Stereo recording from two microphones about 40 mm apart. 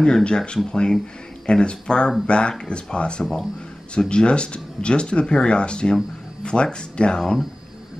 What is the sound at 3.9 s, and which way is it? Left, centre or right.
Speech, left.